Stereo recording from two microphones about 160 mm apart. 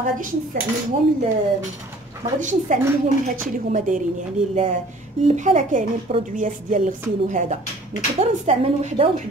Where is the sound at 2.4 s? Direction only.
50° right (ahead or behind).